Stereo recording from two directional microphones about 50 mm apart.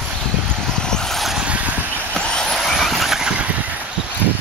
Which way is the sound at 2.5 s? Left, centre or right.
Centre.